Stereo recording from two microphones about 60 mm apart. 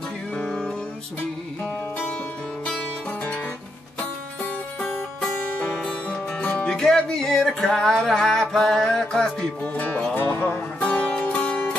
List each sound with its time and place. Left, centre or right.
6.0 s music: left
6.7 s music: centre
9.8 s music: left